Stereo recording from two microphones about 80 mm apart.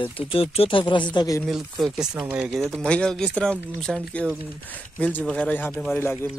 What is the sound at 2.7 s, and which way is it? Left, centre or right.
Speech, centre.